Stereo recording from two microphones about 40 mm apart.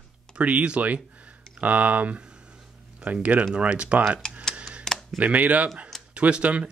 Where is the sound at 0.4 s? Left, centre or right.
Right.